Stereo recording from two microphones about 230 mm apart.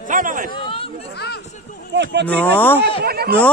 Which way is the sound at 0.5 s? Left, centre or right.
Left.